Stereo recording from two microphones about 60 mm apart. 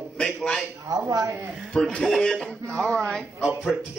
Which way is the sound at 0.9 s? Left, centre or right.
Right.